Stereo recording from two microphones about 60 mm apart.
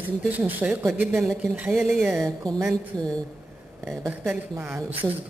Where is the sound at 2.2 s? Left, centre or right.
Right.